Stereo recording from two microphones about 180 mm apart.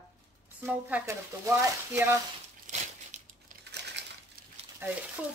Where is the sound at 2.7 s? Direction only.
45° right (ahead or behind).